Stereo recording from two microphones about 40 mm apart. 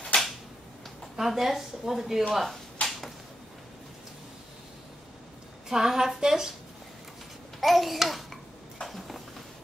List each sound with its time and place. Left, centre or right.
0.1 s a sound: left
1.1 s speech: centre
2.8 s a sound: left
5.7 s speech: centre
7.6 s babbling: centre
8.8 s clip-clop: centre